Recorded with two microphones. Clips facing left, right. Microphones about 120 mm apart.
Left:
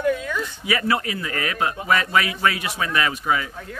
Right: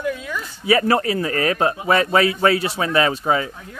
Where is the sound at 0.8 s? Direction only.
35° right (ahead or behind).